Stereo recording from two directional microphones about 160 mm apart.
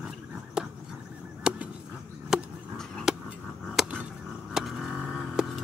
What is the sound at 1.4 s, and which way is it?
Honk, 5° right (ahead or behind).